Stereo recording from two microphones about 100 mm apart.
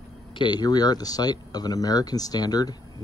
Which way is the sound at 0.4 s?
45° left (ahead or behind).